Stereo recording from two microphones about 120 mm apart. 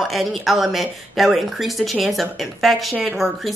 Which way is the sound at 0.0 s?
Centre (ahead or behind).